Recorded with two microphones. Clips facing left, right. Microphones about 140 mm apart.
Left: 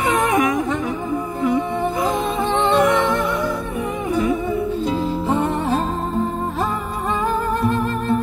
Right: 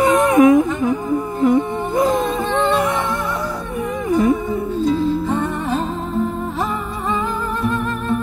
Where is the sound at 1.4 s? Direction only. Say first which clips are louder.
Right 3 dB; 45° right (ahead or behind).